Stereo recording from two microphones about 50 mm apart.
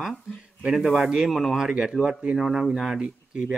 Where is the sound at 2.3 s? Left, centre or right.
Centre.